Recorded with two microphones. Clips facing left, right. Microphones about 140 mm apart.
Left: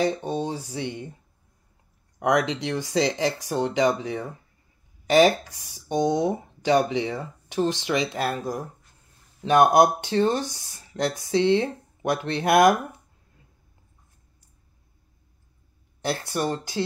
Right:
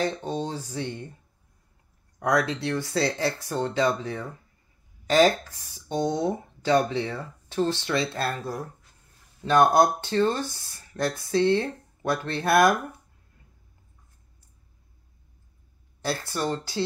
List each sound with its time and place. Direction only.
0.0 s speech: 10° left (ahead or behind)
2.1 s speech: 15° left (ahead or behind)
16.0 s speech: 15° left (ahead or behind)